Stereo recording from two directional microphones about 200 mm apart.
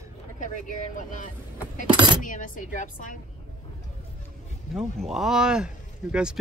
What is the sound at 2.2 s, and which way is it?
Speech, 40° left (ahead or behind).